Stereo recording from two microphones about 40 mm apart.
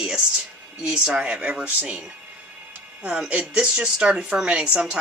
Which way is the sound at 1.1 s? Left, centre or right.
Right.